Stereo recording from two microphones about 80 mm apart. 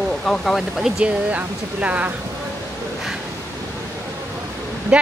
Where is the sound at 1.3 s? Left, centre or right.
Centre.